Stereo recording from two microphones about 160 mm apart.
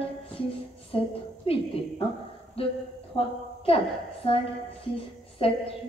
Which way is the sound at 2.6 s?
35° left (ahead or behind).